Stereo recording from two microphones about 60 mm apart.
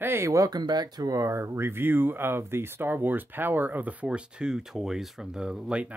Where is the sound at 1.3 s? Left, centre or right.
Right; by 5.9 s centre.